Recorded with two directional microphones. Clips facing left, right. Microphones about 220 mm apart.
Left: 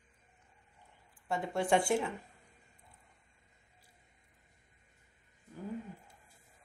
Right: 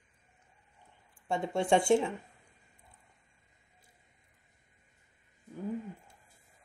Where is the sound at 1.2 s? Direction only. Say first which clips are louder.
Right 3 dB; 25° right (ahead or behind).